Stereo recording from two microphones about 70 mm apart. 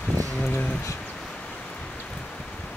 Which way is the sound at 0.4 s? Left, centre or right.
Left.